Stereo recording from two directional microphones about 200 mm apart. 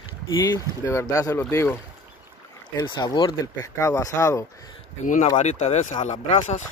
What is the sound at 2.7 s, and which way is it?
Speech, 20° left (ahead or behind).